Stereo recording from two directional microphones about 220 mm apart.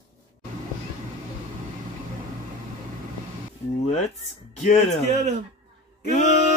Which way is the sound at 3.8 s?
30° left (ahead or behind).